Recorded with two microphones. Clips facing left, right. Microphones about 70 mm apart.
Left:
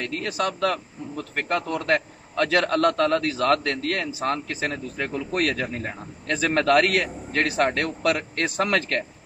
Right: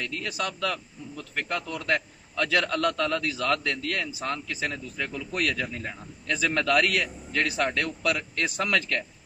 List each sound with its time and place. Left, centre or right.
0.0 s a man's voice: left